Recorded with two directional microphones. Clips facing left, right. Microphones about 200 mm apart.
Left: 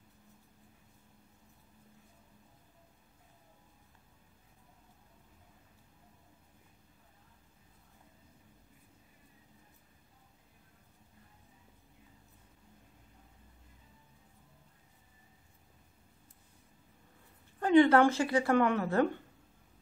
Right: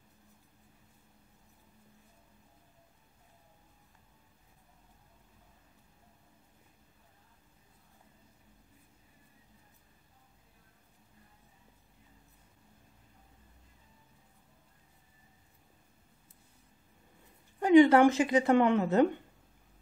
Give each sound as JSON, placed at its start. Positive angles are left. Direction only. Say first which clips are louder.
{"t": 17.6, "sound": "speech", "louder": "right 3 dB", "side_deg": -15}